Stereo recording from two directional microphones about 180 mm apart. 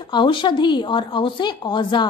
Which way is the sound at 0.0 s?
25° left (ahead or behind).